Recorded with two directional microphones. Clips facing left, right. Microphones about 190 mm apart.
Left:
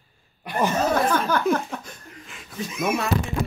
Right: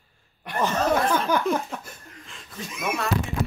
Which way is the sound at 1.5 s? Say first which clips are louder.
Left 2 dB; 5° right (ahead or behind).